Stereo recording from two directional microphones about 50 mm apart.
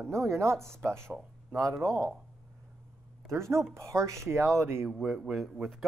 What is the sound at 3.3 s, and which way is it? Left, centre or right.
Speech, right.